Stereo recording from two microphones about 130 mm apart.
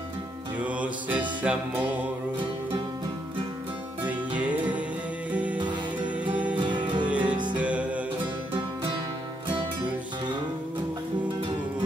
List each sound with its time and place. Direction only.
0.6 s music: 10° right (ahead or behind)
4.0 s music: 10° right (ahead or behind)
6.6 s music: 35° right (ahead or behind)
7.1 s music: 10° right (ahead or behind)